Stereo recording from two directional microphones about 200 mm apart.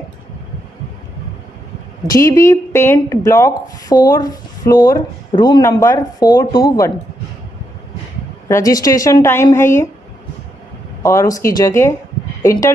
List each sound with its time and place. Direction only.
2.0 s speech: 15° left (ahead or behind)
8.5 s speech: 15° left (ahead or behind)
11.0 s speech: 15° left (ahead or behind)